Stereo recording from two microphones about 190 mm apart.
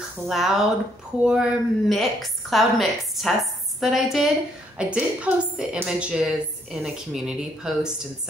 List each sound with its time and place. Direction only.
0.3 s a woman's voice: centre (ahead or behind)